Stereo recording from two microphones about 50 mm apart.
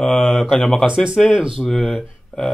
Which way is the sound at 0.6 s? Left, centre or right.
Centre.